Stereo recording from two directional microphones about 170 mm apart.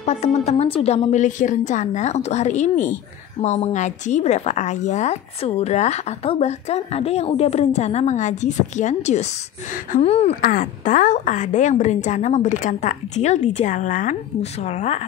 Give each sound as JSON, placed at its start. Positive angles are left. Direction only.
{"t": 0.0, "sound": "a woman's voice", "side_deg": 40}
{"t": 10.4, "sound": "a woman's voice", "side_deg": 55}